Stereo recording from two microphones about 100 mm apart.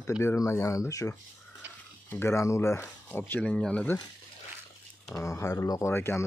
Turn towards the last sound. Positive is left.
turn(degrees=25)  # may be behind; listen again after turning